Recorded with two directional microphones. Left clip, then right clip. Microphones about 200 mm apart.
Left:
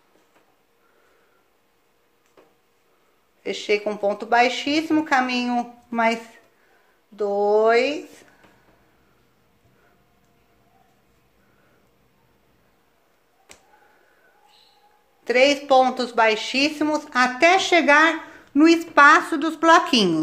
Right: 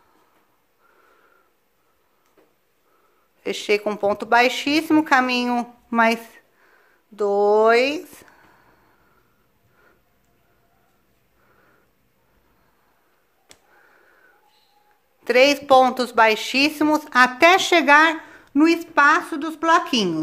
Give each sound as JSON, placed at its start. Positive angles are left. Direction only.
{"t": 3.4, "sound": "a woman's voice", "side_deg": -25}
{"t": 15.2, "sound": "a woman's voice", "side_deg": -25}